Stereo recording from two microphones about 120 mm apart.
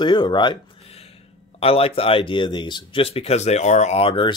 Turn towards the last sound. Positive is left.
turn(degrees=45)  # may be behind; listen again after turning